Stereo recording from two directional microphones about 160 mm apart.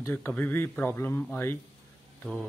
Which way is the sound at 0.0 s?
15° left (ahead or behind).